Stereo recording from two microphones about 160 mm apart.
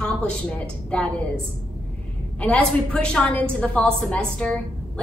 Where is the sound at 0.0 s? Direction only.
5° left (ahead or behind).